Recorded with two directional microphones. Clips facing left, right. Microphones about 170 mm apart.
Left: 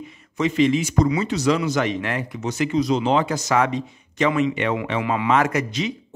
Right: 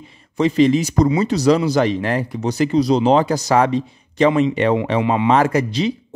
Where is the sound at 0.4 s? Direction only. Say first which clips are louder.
Right 4 dB; 35° right (ahead or behind).